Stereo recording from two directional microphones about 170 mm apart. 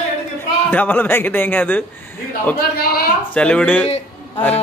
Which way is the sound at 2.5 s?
60° left (ahead or behind).